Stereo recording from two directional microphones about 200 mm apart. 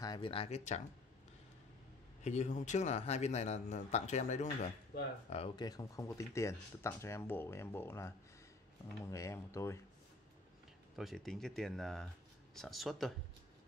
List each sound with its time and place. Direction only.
0.0 s speech: 25° left (ahead or behind)
2.2 s a man's voice: 35° left (ahead or behind)
5.3 s speech: 25° left (ahead or behind)
11.0 s speech: centre (ahead or behind)